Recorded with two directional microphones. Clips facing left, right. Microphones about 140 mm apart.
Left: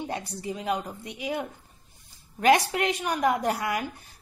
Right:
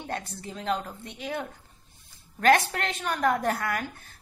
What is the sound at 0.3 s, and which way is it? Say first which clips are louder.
Speech: left 1 dB; 10° left (ahead or behind).